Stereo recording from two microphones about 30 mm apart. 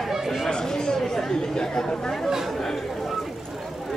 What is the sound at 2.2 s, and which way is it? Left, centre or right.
Speech, centre.